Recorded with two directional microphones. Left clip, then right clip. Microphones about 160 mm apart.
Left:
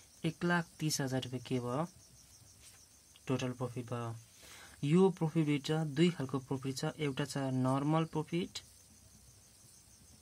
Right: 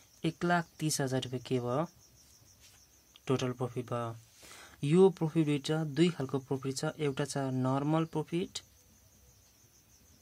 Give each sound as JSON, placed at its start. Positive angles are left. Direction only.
{"t": 0.2, "sound": "speech", "side_deg": -30}
{"t": 3.3, "sound": "speech", "side_deg": -40}